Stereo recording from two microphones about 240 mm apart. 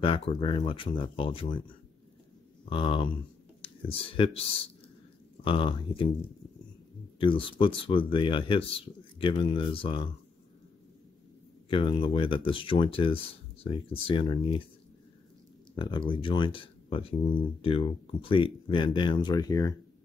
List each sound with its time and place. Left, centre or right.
0.0 s speech: left
2.7 s speech: left
7.2 s speech: left
11.7 s speech: left
15.7 s speech: centre